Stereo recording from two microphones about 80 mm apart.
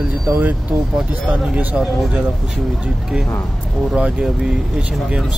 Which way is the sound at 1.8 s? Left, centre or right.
Centre.